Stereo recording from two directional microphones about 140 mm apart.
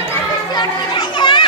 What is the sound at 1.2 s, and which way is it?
Children playing, 35° left (ahead or behind).